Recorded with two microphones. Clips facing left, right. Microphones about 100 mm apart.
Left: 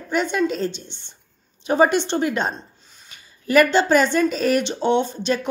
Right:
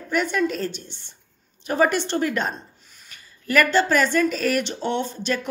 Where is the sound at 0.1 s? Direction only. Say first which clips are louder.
Left 2 dB; 25° left (ahead or behind).